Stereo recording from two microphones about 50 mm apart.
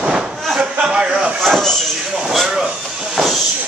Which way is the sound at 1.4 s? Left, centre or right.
Centre.